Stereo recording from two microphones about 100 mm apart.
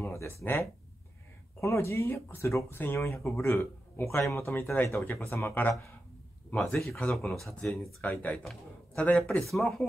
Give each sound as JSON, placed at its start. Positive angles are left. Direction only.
{"t": 0.0, "sound": "speech", "side_deg": 30}
{"t": 6.9, "sound": "speech", "side_deg": 0}
{"t": 8.0, "sound": "speech", "side_deg": 20}